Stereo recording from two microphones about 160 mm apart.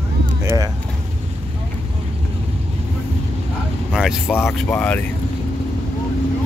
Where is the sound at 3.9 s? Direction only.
5° right (ahead or behind).